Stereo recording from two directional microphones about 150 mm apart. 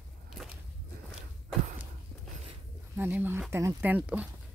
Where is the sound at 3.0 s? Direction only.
15° right (ahead or behind).